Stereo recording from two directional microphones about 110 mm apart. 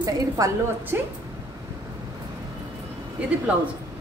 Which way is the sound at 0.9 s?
20° right (ahead or behind).